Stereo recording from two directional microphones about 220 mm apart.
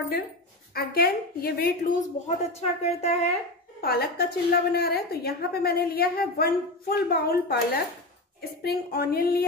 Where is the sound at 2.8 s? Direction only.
30° left (ahead or behind).